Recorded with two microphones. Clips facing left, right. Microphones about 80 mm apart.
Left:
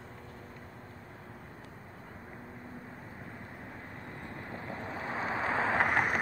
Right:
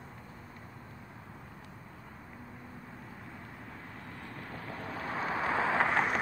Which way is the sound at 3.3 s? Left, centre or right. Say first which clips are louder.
Left 1 dB; left.